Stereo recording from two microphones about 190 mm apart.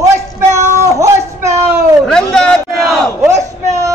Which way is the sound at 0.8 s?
15° right (ahead or behind).